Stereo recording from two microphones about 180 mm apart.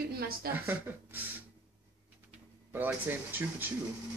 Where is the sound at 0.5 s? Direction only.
10° right (ahead or behind).